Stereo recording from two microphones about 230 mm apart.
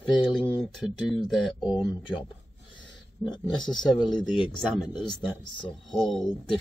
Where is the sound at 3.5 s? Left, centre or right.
Centre.